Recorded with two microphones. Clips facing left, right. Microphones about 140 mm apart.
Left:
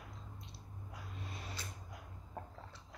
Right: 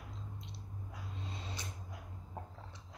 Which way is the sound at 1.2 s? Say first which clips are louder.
Right 2 dB; 25° right (ahead or behind).